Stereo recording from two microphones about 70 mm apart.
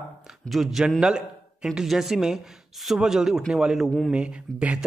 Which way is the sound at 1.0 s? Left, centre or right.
Centre.